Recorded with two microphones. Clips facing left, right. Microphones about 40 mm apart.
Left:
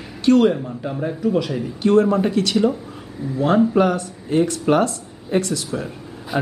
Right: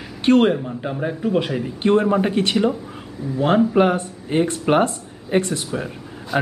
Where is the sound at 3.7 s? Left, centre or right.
Right.